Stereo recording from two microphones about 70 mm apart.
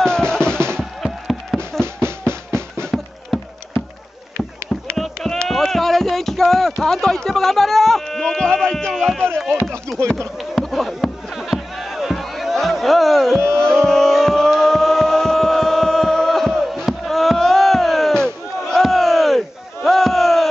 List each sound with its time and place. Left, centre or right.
0.0 s music: centre
1.0 s music: centre
2.0 s drum: right
2.9 s a sound: centre
4.9 s a sound: centre
9.9 s speech: right
10.6 s a sound: centre
13.7 s chant: centre
18.7 s battle cry: centre